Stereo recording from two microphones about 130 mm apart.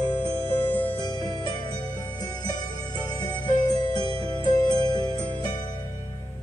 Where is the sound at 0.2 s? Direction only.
45° right (ahead or behind).